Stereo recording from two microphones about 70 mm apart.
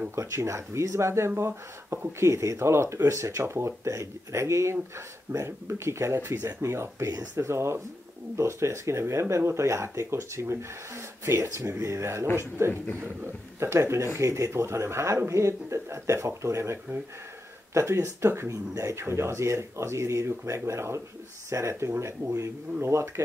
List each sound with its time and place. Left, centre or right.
0.1 s speech: right